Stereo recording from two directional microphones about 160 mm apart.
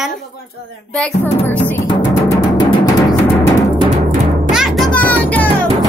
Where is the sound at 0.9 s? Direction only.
5° left (ahead or behind).